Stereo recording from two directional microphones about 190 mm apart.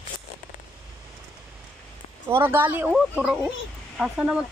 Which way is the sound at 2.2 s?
10° right (ahead or behind).